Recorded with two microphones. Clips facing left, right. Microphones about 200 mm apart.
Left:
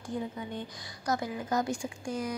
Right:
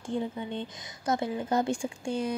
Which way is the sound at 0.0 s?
25° right (ahead or behind).